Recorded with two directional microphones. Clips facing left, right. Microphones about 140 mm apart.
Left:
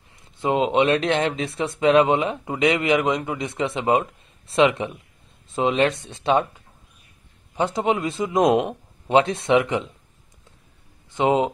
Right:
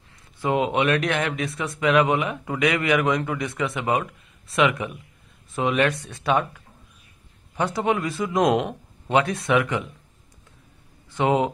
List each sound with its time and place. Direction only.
0.4 s speech: 20° left (ahead or behind)
11.1 s speech: 20° left (ahead or behind)